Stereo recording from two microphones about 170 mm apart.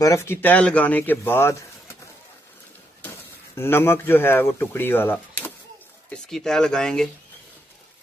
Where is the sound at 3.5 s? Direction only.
15° left (ahead or behind).